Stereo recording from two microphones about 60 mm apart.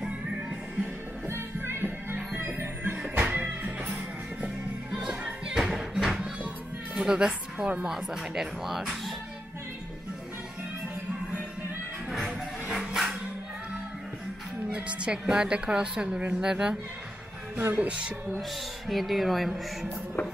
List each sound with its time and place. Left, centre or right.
0.0 s music: centre
1.2 s music: right
3.0 s music: centre
5.6 s music: centre
7.0 s a woman's voice: centre
7.5 s a woman's voice: right
7.8 s a woman's voice: centre
12.1 s music: centre
14.7 s a woman's voice: centre
17.7 s music: centre
18.9 s speech: centre